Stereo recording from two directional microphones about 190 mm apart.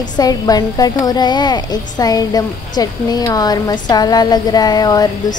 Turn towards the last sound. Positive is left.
turn(degrees=20)  # may be behind; listen again after turning